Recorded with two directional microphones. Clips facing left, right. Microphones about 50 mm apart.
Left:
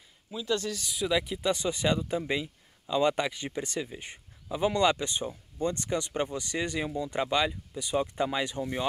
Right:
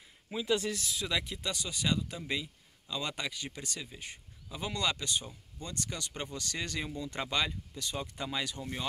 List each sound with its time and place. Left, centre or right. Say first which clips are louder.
0.3 s speech: left 1 dB; centre
0.8 s speech: left 6 dB; centre
1.5 s speech: left 6 dB; left